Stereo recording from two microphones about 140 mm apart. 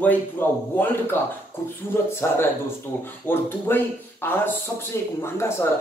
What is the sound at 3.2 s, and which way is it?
A man's voice, 15° left (ahead or behind).